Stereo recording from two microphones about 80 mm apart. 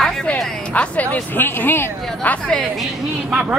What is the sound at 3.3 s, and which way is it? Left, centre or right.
Speech, centre.